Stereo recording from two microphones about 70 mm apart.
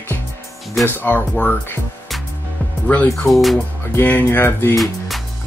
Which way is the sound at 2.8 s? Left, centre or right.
Left.